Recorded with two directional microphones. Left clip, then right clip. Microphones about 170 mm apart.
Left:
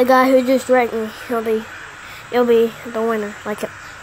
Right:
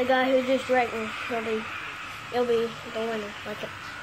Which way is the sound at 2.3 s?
55° left (ahead or behind).